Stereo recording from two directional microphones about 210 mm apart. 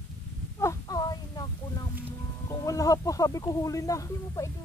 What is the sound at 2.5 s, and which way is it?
Speech, 15° left (ahead or behind).